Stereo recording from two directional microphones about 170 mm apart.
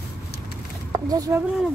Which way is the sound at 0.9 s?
20° right (ahead or behind).